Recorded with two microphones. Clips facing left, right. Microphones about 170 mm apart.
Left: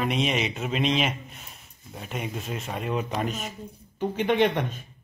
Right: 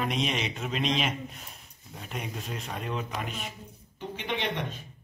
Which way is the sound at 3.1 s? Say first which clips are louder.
Left 6 dB; 40° left (ahead or behind).